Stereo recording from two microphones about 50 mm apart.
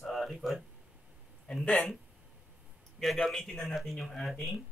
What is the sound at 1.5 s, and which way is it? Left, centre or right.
Speech, centre.